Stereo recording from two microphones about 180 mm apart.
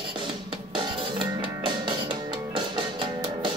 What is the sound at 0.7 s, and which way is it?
Music, 25° right (ahead or behind).